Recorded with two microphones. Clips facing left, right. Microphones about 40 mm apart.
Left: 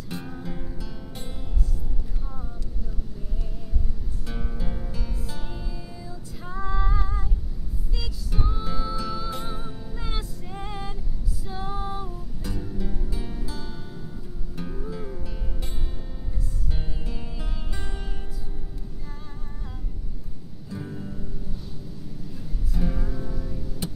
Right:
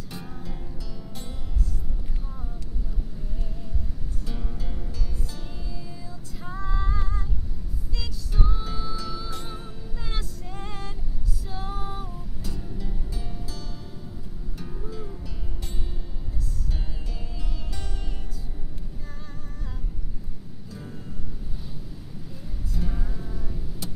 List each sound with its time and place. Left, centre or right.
0.1 s music: centre
4.3 s music: centre
6.0 s female singing: centre
8.0 s music: centre
11.4 s female singing: centre
12.5 s music: centre
16.7 s music: centre
20.7 s music: centre
22.8 s music: centre
23.8 s music: left